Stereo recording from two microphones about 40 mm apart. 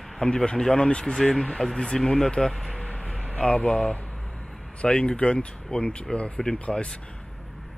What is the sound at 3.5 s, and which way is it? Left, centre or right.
Speech, left.